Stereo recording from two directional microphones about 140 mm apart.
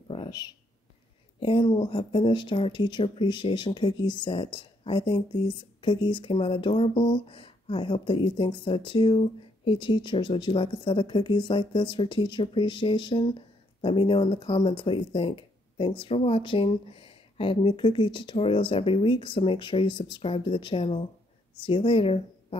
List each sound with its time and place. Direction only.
0.1 s speech: 35° left (ahead or behind)